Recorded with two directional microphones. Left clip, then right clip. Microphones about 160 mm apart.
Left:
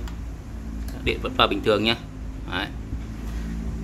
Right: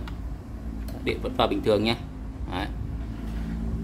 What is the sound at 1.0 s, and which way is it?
Speech, 5° right (ahead or behind).